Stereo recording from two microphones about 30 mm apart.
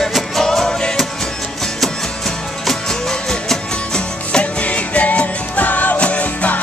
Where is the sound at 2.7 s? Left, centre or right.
Centre.